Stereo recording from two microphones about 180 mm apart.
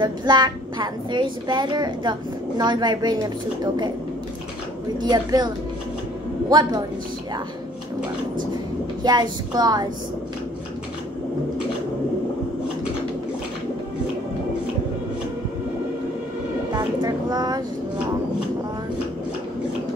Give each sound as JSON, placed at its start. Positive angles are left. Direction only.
{"t": 0.0, "sound": "a woman's voice", "side_deg": -25}
{"t": 5.0, "sound": "a woman's voice", "side_deg": -20}
{"t": 6.5, "sound": "a woman's voice", "side_deg": -25}
{"t": 9.0, "sound": "a woman's voice", "side_deg": -25}
{"t": 16.7, "sound": "music", "side_deg": -25}